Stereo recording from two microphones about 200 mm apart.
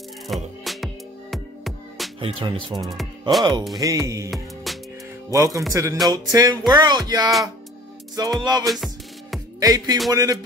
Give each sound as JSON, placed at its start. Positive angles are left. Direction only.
{"t": 0.7, "sound": "music", "side_deg": 0}
{"t": 2.1, "sound": "speech", "side_deg": -25}
{"t": 2.8, "sound": "speech", "side_deg": 0}
{"t": 3.8, "sound": "music", "side_deg": -15}
{"t": 4.7, "sound": "music", "side_deg": 0}
{"t": 5.3, "sound": "music", "side_deg": -15}
{"t": 6.0, "sound": "speech", "side_deg": -20}
{"t": 8.6, "sound": "music", "side_deg": 0}
{"t": 9.6, "sound": "music", "side_deg": -20}